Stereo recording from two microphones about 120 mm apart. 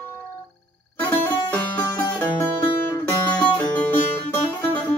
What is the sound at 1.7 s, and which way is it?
Music, 20° left (ahead or behind).